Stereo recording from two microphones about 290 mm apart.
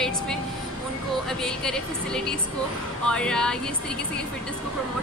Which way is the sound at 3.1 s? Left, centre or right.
Centre.